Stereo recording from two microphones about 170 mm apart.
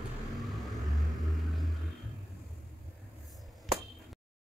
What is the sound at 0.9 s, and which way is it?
Vehicle, centre (ahead or behind).